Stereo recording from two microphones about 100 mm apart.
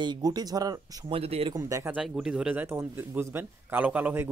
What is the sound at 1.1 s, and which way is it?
Speech, 80° right.